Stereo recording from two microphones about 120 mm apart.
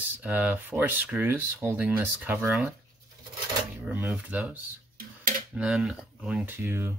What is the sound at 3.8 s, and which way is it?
Speech, 15° right (ahead or behind).